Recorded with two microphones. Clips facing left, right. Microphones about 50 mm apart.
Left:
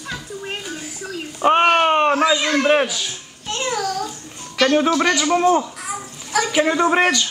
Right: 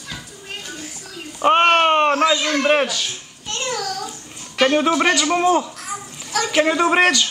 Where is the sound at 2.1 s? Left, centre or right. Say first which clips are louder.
Even; centre.